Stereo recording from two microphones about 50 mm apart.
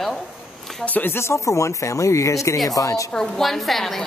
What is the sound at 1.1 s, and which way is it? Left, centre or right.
Speech, left.